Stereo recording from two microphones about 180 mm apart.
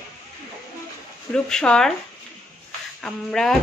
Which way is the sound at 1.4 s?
5° left (ahead or behind).